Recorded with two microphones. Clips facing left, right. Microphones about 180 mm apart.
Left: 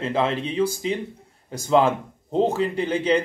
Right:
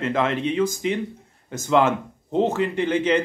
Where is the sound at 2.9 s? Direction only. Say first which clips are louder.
Even; 35° left (ahead or behind).